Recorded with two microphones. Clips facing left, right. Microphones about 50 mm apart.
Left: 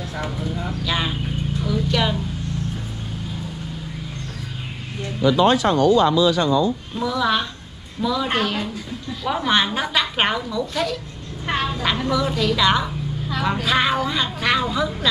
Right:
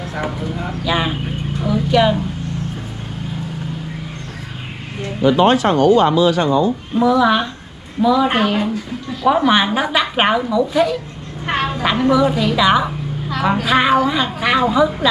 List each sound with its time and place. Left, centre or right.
0.8 s a sound: centre
5.2 s speech: right
7.0 s a woman's voice: centre
11.4 s a sound: right
12.1 s a woman's voice: centre
13.4 s a woman's voice: right